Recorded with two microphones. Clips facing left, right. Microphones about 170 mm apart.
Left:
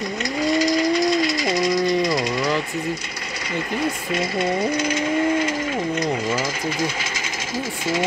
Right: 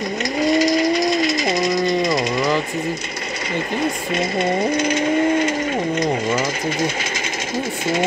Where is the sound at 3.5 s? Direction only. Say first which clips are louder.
Right 2 dB; 25° right (ahead or behind).